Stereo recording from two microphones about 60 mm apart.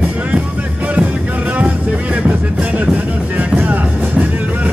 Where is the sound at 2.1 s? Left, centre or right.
Right.